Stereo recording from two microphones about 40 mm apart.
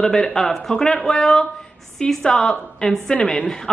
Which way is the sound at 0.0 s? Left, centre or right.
Centre.